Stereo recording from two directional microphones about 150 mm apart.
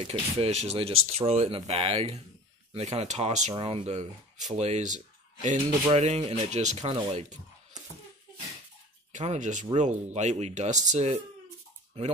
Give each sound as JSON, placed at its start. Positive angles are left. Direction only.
{"t": 0.1, "sound": "speech", "side_deg": -45}
{"t": 9.1, "sound": "speech", "side_deg": -50}